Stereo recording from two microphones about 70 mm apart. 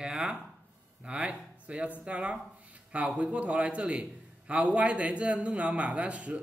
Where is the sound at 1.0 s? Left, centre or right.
Centre.